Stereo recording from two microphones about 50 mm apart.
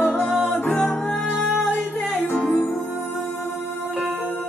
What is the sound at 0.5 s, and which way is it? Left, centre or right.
Music, centre.